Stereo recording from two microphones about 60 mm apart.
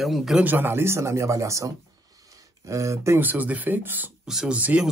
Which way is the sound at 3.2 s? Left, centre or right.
Right.